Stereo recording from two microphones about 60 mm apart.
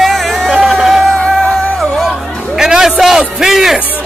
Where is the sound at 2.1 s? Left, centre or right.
Centre.